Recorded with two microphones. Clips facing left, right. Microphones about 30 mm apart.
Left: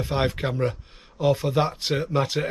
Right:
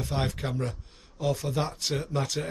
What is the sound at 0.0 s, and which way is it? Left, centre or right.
Speech, left.